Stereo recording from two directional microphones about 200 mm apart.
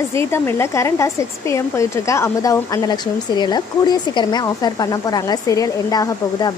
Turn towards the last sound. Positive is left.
turn(degrees=20)  # may be behind; listen again after turning